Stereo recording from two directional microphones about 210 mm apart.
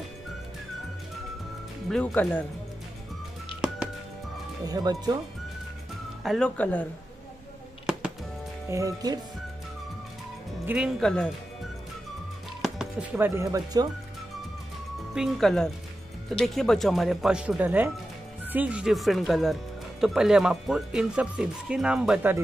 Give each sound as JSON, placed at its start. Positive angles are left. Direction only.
{"t": 1.9, "sound": "speech", "side_deg": 5}
{"t": 4.6, "sound": "speech", "side_deg": -20}
{"t": 6.2, "sound": "speech", "side_deg": 5}
{"t": 8.6, "sound": "speech", "side_deg": -15}
{"t": 10.7, "sound": "speech", "side_deg": 0}
{"t": 12.6, "sound": "speech", "side_deg": -5}
{"t": 15.1, "sound": "speech", "side_deg": 0}